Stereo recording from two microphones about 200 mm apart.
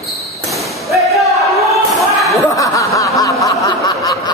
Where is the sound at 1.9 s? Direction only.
Centre (ahead or behind).